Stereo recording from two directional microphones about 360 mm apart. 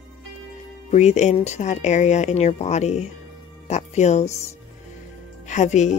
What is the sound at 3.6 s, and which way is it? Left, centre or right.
Speech, centre.